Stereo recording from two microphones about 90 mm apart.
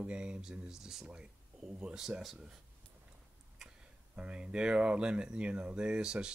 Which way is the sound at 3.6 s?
10° right (ahead or behind).